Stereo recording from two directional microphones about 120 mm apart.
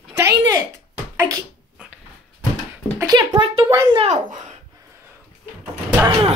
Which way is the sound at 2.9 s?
35° right (ahead or behind).